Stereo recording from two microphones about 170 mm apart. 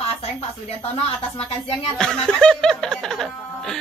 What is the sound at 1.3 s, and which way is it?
Speech, 35° left (ahead or behind).